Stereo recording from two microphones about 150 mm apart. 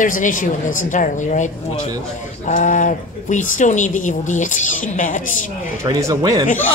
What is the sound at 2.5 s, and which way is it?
Speech, 55° left (ahead or behind).